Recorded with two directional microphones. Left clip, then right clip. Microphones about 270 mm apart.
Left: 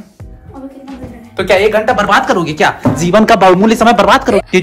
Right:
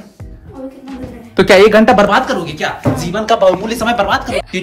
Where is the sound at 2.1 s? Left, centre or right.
Centre.